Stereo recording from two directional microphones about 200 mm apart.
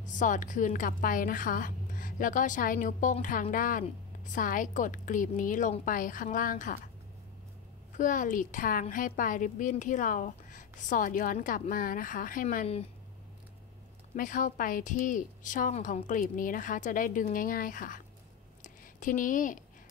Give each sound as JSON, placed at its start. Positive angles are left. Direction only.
{"t": 0.0, "sound": "a woman's voice", "side_deg": 40}
{"t": 8.0, "sound": "a woman's voice", "side_deg": 40}
{"t": 14.1, "sound": "a woman's voice", "side_deg": 40}
{"t": 18.6, "sound": "a sound", "side_deg": 40}